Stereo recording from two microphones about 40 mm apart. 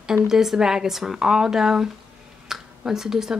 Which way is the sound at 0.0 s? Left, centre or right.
Centre.